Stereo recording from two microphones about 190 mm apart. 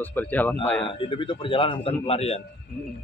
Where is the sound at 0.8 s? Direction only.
25° left (ahead or behind).